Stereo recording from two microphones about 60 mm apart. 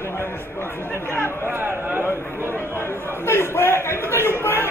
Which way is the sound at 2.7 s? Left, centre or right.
Left.